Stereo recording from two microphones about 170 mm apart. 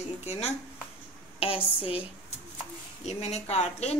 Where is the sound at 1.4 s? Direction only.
35° left (ahead or behind).